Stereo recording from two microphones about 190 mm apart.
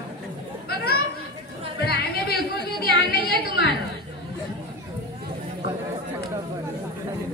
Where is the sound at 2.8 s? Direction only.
55° left (ahead or behind).